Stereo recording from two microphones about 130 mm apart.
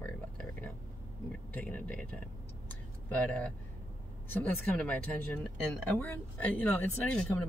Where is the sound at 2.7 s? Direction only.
10° left (ahead or behind).